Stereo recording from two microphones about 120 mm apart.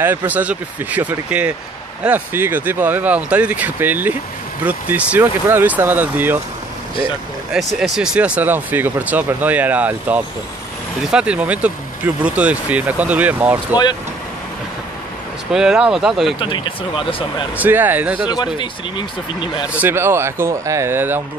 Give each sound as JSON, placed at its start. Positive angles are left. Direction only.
{"t": 0.3, "sound": "speech", "side_deg": -15}
{"t": 7.5, "sound": "speech", "side_deg": -5}
{"t": 15.5, "sound": "speech", "side_deg": -5}
{"t": 16.3, "sound": "speech", "side_deg": 45}
{"t": 17.6, "sound": "speech", "side_deg": -15}
{"t": 18.3, "sound": "speech", "side_deg": 35}
{"t": 19.7, "sound": "speech", "side_deg": -15}